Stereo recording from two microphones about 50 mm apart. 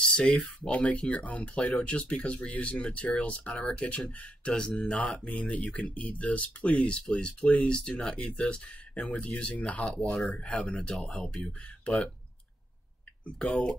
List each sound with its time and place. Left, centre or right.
0.0 s speech: centre
13.2 s speech: left